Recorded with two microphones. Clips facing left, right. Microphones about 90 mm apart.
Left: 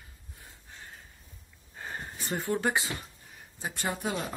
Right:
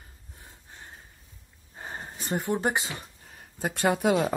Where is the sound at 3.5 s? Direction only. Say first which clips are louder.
Right 8 dB; 60° right (ahead or behind); by 4.4 s 90° right.